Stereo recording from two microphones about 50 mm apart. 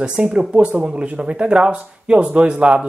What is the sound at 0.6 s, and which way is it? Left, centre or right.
Speech, right.